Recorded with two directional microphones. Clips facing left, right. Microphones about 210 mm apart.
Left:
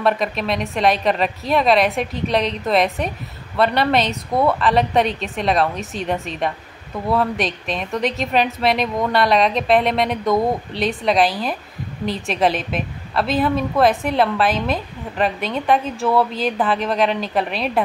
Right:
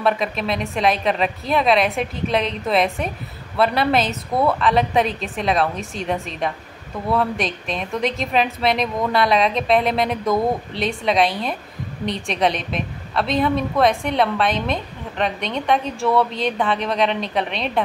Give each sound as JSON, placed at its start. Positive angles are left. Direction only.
{"t": 0.0, "sound": "a woman's voice", "side_deg": 0}